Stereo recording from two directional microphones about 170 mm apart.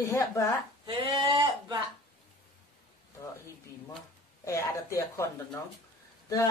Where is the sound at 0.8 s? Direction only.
30° right (ahead or behind).